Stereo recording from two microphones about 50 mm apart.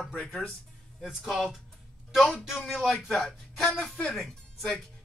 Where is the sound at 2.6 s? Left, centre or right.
Centre.